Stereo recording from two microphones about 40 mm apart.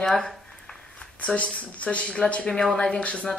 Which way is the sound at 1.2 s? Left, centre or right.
Left.